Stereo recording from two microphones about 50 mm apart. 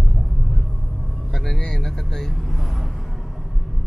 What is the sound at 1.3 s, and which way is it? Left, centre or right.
Vehicle, centre.